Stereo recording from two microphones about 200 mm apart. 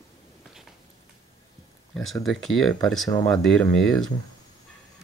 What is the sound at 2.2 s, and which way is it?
Speech, centre (ahead or behind).